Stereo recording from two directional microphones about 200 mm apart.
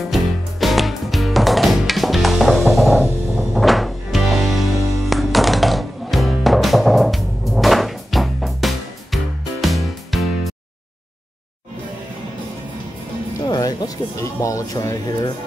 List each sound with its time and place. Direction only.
0.0 s music: centre (ahead or behind)
13.5 s speech: 20° left (ahead or behind)